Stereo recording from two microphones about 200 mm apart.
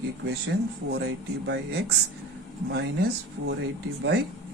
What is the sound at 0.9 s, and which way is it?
Speech, 55° right (ahead or behind).